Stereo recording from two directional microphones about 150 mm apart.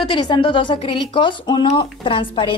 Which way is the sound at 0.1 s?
30° left (ahead or behind).